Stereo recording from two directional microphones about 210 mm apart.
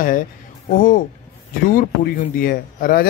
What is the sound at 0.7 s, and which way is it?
Speech, 40° left (ahead or behind).